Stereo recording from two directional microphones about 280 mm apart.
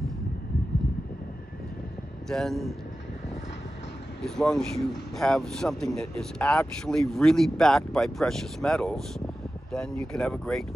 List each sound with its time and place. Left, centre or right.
2.2 s speech: centre
4.2 s speech: centre